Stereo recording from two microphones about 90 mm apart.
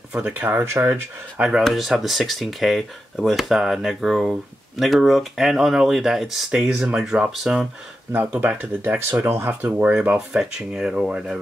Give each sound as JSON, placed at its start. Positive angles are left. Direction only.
{"t": 0.1, "sound": "speech", "side_deg": -15}
{"t": 0.6, "sound": "speech", "side_deg": -25}
{"t": 1.6, "sound": "speech", "side_deg": 0}
{"t": 8.1, "sound": "speech", "side_deg": -20}
{"t": 10.1, "sound": "speech", "side_deg": -5}